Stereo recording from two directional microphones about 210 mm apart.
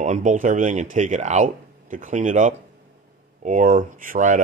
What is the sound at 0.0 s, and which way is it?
Speech, 35° right (ahead or behind).